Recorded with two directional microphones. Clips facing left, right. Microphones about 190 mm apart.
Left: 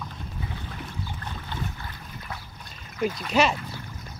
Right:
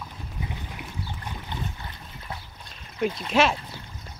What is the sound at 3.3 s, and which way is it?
Speech, centre (ahead or behind).